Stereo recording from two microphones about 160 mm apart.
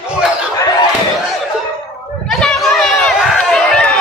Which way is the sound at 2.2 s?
Centre (ahead or behind).